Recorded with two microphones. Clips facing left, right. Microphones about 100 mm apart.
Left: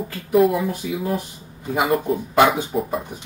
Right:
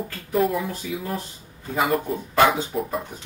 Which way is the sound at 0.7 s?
15° left (ahead or behind).